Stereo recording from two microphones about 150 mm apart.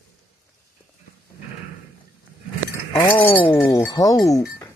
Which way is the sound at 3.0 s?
15° left (ahead or behind).